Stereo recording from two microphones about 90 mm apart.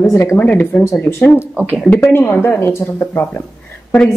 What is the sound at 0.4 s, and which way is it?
A woman's voice, 20° left (ahead or behind).